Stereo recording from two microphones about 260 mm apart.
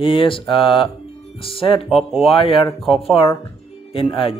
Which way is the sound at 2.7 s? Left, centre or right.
Centre.